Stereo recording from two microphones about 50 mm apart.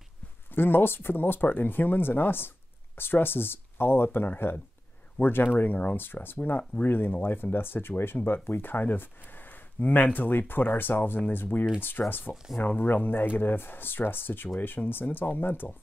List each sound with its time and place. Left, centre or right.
0.6 s speech: left